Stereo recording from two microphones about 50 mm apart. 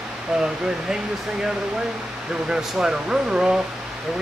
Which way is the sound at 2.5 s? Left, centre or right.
Centre.